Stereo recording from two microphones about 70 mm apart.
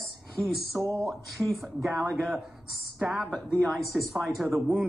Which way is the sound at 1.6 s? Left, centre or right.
Centre.